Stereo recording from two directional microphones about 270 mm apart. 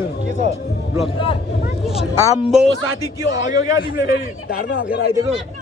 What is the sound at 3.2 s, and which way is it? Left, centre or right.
A man's voice, left.